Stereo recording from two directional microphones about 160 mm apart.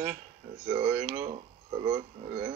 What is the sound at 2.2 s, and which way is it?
Speech, 20° right (ahead or behind).